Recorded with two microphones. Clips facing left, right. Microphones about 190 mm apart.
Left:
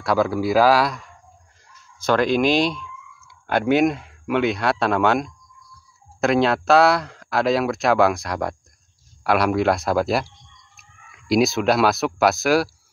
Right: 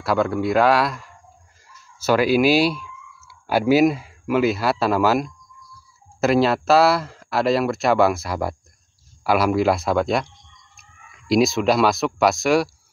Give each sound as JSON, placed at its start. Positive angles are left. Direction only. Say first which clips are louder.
{"t": 0.0, "sound": "speech", "louder": "even", "side_deg": 0}